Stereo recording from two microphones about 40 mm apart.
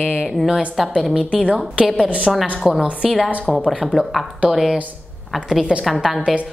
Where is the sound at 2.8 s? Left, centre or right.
Right.